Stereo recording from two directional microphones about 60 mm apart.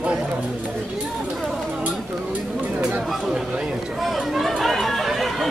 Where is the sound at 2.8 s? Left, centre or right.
Centre.